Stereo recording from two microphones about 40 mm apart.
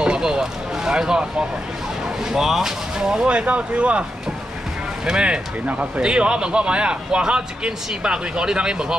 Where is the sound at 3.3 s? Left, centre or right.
Right.